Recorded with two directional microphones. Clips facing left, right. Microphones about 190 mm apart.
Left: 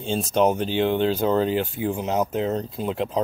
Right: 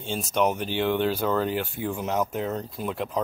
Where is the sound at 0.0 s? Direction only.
30° left (ahead or behind).